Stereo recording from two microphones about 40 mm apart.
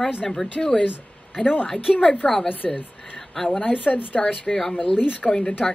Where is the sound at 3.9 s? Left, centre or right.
Left.